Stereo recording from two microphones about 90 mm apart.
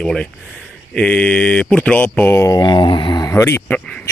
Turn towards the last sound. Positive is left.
turn(degrees=25)  # may be behind; listen again after turning